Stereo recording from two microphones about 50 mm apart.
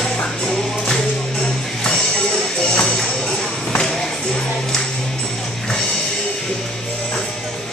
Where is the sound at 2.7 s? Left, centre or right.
Centre.